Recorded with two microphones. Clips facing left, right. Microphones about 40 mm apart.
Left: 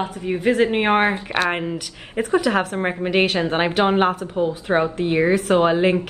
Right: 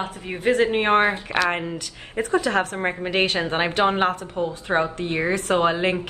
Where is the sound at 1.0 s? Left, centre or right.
Left.